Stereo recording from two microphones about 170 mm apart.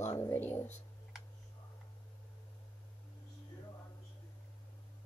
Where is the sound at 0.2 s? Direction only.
10° left (ahead or behind).